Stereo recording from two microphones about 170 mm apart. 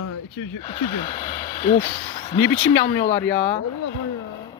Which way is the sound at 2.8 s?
90° left.